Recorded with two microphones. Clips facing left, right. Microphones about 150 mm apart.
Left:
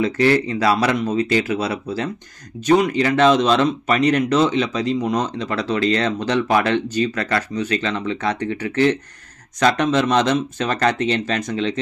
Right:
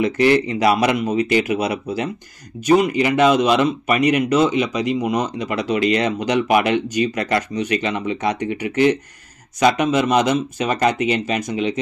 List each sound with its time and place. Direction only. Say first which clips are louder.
0.0 s speech: right 1 dB; 20° right (ahead or behind)